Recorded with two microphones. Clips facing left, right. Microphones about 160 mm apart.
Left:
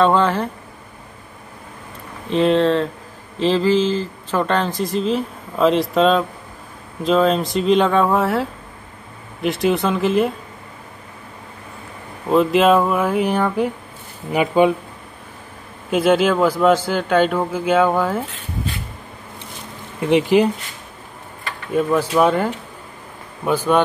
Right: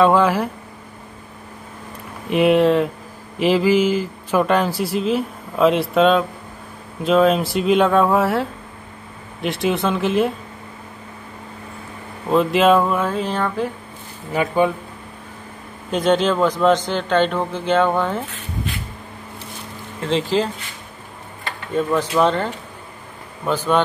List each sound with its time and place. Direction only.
0.0 s speech: 5° right (ahead or behind)
2.2 s speech: 10° right (ahead or behind)
12.3 s a man's voice: centre (ahead or behind); by 14.7 s 15° left (ahead or behind)
15.9 s a man's voice: 5° left (ahead or behind)
20.0 s a man's voice: 15° left (ahead or behind)
21.7 s a man's voice: 10° left (ahead or behind)